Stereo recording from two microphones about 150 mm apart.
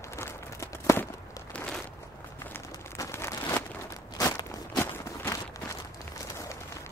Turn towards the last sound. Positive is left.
turn(degrees=20)  # may be behind; listen again after turning